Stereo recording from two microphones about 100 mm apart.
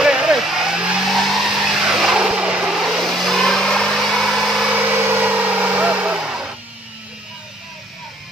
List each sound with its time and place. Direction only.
0.0 s vehicle: 5° right (ahead or behind)
4.7 s vehicle: 15° right (ahead or behind)